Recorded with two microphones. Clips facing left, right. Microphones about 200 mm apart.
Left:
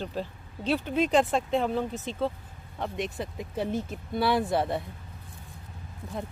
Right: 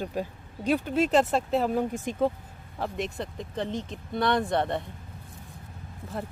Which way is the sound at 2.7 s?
Centre (ahead or behind).